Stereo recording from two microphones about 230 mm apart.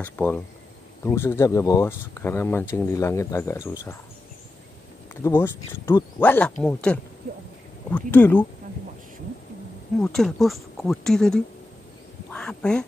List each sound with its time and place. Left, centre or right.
0.0 s speech: centre
5.2 s speech: centre
9.9 s speech: centre